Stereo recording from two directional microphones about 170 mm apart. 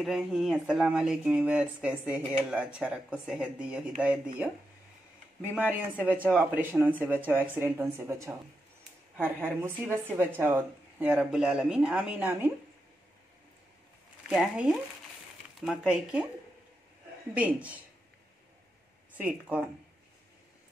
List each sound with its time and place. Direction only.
0.0 s speech: centre (ahead or behind)
5.4 s speech: 10° right (ahead or behind)
9.4 s speech: 10° right (ahead or behind)
14.3 s speech: centre (ahead or behind)
17.3 s speech: 10° right (ahead or behind)
19.1 s speech: 10° right (ahead or behind)